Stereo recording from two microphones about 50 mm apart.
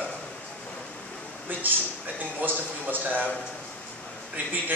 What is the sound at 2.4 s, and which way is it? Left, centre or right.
Speech, right.